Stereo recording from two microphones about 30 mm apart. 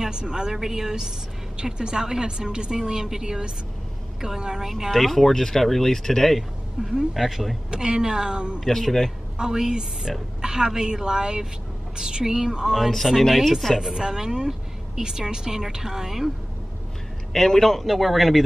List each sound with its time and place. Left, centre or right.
0.0 s a woman's voice: right
4.9 s speech: centre
6.8 s speech: centre
7.7 s a woman's voice: right
8.6 s speech: centre
9.4 s a woman's voice: right
12.9 s speech: centre
13.9 s a woman's voice: centre
17.3 s speech: centre
17.8 s speech: centre